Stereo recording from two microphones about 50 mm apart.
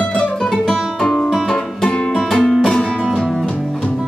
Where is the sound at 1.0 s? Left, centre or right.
Centre.